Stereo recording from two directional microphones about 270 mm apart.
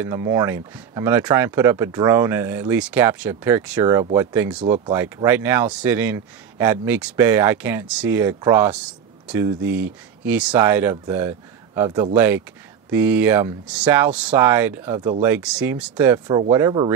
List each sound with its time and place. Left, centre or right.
0.0 s speech: centre